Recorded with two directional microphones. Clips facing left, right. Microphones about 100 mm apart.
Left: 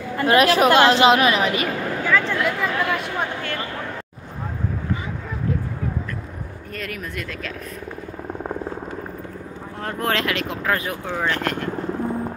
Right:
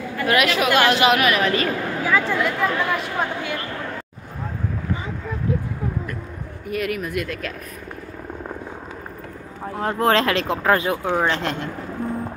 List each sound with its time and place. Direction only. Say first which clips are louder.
0.2 s a woman's voice: left 4 dB; 30° left (ahead or behind)
0.7 s a woman's voice: even; 25° left (ahead or behind)
2.0 s a sound: even; 10° right (ahead or behind)
2.3 s speech: right 1 dB; centre (ahead or behind)
6.7 s speech: right 8 dB; 5° right (ahead or behind)
9.8 s speech: right 5 dB; 25° right (ahead or behind)